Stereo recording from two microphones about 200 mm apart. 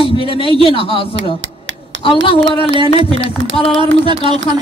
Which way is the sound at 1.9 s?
70° right (ahead or behind).